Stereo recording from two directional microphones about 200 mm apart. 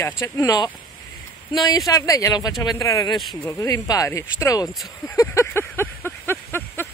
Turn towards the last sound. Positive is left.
turn(degrees=10)  # may be behind; listen again after turning